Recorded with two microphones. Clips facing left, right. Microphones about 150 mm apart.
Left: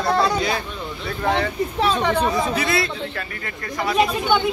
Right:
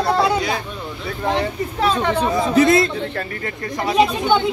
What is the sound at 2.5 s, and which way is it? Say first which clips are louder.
Speech: right 8 dB; 45° right (ahead or behind).